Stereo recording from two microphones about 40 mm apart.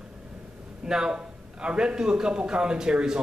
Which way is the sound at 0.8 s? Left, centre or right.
Centre.